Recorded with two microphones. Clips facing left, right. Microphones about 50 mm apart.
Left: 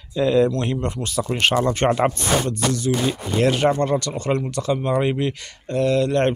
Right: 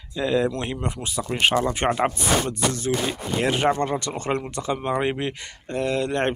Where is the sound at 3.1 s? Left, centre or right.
Centre.